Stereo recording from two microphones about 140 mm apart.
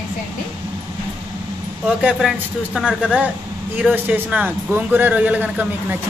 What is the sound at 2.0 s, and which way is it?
A woman's voice, 5° right (ahead or behind).